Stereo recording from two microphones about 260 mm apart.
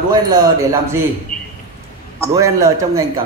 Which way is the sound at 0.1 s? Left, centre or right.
Centre.